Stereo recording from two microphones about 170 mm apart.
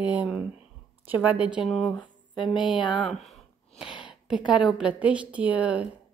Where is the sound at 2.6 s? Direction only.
30° left (ahead or behind).